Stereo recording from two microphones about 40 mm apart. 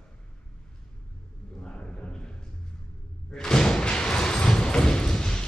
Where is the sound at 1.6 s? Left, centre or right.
Left.